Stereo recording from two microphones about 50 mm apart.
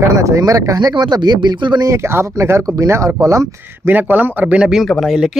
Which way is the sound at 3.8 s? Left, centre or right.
Right.